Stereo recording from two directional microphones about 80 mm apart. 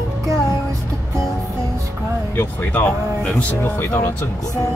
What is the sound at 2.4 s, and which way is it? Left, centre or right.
Speech, left.